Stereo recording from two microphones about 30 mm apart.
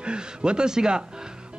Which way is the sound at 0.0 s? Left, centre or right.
Right.